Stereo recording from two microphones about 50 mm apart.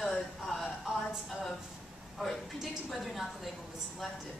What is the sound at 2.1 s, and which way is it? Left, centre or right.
Speech, centre.